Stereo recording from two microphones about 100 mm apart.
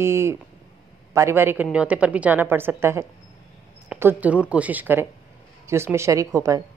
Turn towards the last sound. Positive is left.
turn(degrees=-30)  # may be behind; listen again after turning